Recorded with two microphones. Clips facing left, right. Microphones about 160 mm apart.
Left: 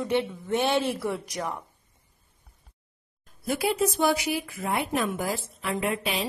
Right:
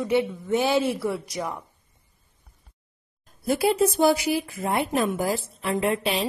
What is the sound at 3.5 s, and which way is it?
A woman's voice, 35° right (ahead or behind).